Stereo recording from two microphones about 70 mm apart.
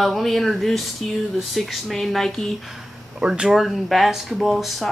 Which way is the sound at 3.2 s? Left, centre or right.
Centre.